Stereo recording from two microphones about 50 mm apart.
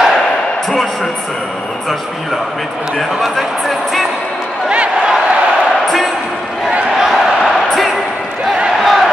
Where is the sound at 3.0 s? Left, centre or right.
Centre.